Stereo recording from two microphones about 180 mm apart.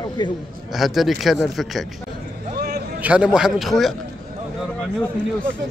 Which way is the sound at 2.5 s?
60° right (ahead or behind).